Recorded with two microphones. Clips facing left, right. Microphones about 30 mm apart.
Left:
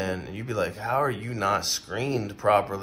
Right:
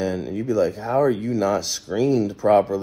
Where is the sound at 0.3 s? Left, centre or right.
Left.